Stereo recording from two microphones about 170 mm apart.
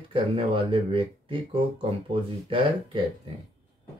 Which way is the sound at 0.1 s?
30° right (ahead or behind).